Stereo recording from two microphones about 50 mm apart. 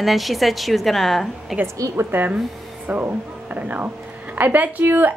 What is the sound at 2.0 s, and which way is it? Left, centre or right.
A woman's voice, right.